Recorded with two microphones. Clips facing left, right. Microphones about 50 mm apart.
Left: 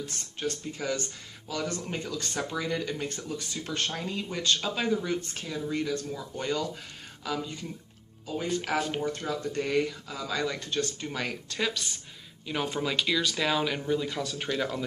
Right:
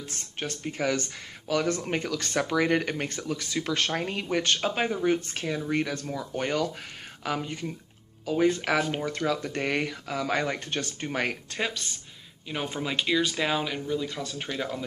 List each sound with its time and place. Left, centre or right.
0.7 s speech: right
4.6 s speech: right
7.2 s speech: right
8.7 s speech: right
9.0 s speech: right
12.4 s speech: centre
13.7 s speech: centre
14.2 s speech: centre